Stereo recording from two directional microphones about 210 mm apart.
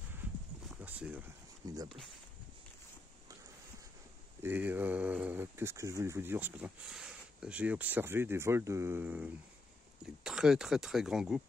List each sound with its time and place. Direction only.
0.8 s a sound: 5° right (ahead or behind)
1.7 s speech: 15° right (ahead or behind)
4.4 s speech: 10° right (ahead or behind)